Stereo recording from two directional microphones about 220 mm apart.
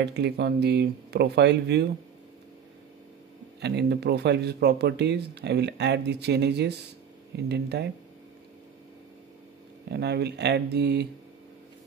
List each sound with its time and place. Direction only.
0.0 s speech: 50° right (ahead or behind)
3.6 s speech: 50° right (ahead or behind)
9.8 s speech: 50° right (ahead or behind)